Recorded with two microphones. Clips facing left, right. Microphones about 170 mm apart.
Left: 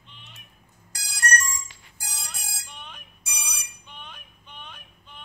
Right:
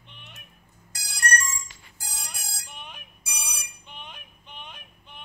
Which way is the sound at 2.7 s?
10° right (ahead or behind).